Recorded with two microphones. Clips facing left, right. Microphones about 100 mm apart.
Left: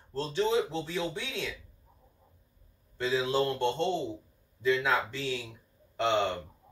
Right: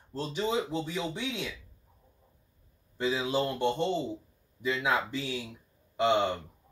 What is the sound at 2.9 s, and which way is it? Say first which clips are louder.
Speech: left 1 dB; 15° right (ahead or behind).